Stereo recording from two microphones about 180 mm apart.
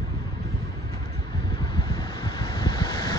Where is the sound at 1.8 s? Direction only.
25° left (ahead or behind).